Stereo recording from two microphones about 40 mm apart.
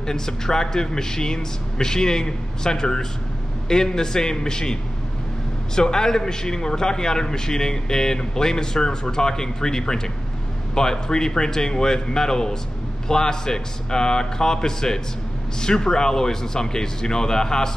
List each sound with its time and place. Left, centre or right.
0.0 s a man's voice: centre
5.8 s a man's voice: centre